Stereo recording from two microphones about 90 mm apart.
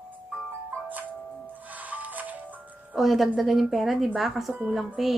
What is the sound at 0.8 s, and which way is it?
Music, 20° right (ahead or behind).